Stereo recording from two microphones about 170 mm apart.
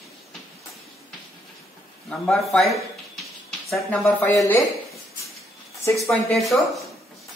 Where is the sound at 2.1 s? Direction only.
Centre (ahead or behind); by 4.6 s 15° left (ahead or behind).